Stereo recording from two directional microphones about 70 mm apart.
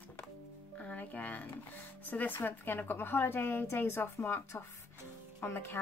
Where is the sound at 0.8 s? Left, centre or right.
Left.